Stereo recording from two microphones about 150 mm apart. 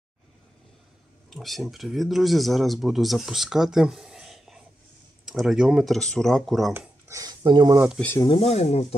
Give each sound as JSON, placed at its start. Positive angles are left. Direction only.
{"t": 1.3, "sound": "speech", "side_deg": 0}
{"t": 7.1, "sound": "speech", "side_deg": -25}
{"t": 8.2, "sound": "speech", "side_deg": 35}